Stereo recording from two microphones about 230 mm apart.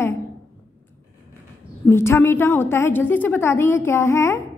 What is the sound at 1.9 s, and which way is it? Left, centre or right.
A woman's voice, centre.